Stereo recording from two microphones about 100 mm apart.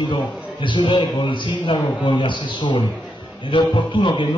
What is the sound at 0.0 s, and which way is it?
A man's voice, 50° left (ahead or behind).